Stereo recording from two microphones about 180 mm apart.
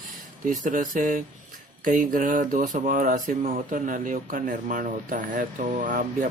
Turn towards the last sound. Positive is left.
turn(degrees=-45)  # may be behind; listen again after turning